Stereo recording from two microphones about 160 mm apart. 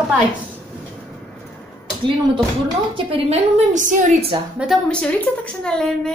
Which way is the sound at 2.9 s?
35° right (ahead or behind).